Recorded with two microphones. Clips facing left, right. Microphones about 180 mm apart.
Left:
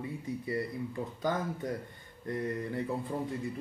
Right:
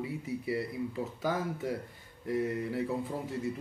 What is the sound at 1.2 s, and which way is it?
Speech, 5° right (ahead or behind).